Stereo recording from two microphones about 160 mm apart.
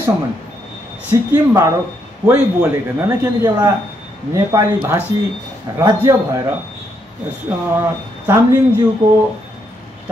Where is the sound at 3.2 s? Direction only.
20° right (ahead or behind).